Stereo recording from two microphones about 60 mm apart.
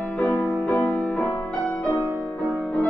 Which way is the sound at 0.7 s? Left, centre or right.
Left.